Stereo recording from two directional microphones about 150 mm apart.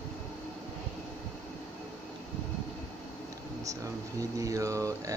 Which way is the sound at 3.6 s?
20° right (ahead or behind).